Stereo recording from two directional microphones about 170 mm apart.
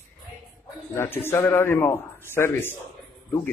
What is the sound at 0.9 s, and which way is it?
Speech, 15° left (ahead or behind).